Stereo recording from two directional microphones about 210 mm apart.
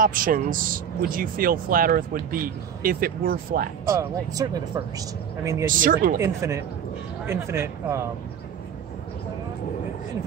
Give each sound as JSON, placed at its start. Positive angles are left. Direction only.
{"t": 0.0, "sound": "a man's voice", "side_deg": -40}
{"t": 3.9, "sound": "speech", "side_deg": -15}
{"t": 5.7, "sound": "a man's voice", "side_deg": -40}
{"t": 6.1, "sound": "speech", "side_deg": -15}